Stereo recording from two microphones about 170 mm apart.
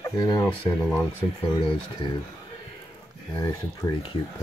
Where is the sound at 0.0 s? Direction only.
20° left (ahead or behind).